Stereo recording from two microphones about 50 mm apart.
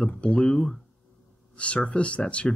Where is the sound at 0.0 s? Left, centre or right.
Left.